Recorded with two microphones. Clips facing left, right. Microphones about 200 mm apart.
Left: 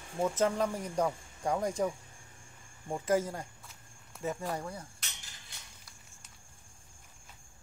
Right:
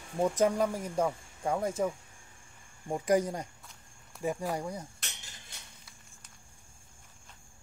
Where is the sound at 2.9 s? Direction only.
15° right (ahead or behind).